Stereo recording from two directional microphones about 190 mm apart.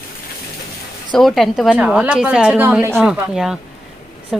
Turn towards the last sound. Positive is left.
turn(degrees=-5)  # may be behind; listen again after turning